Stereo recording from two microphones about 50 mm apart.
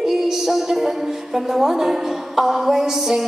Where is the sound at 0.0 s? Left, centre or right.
Centre.